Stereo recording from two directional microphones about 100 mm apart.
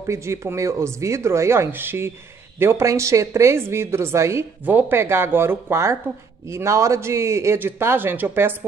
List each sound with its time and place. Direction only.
0.0 s a woman's voice: 30° right (ahead or behind)